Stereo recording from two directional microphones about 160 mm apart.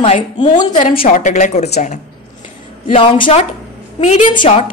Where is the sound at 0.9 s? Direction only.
55° left (ahead or behind).